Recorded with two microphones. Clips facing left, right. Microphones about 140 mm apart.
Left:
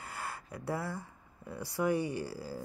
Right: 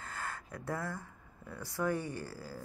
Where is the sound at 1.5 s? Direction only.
10° left (ahead or behind).